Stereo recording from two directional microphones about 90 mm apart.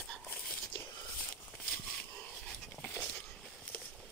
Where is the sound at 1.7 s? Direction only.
10° left (ahead or behind).